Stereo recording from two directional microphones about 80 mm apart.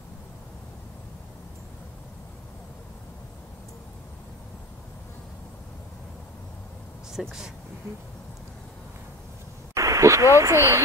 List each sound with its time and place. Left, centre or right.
7.1 s speech: centre
9.8 s speech: right